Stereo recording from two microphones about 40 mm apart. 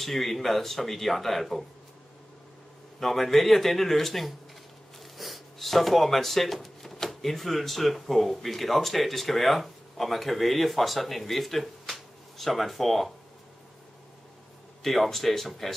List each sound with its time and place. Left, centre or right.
0.0 s speech: centre
3.0 s speech: centre
14.8 s speech: centre